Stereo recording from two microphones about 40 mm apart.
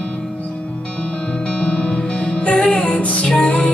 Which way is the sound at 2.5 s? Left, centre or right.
Left.